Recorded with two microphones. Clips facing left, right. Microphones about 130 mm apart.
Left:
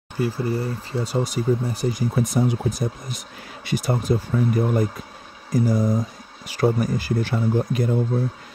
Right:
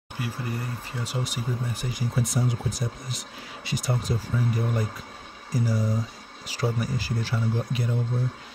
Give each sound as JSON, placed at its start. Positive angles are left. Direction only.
{"t": 0.2, "sound": "speech", "side_deg": 30}